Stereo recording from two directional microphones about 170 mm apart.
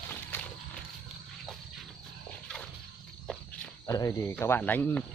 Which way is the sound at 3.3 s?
5° left (ahead or behind).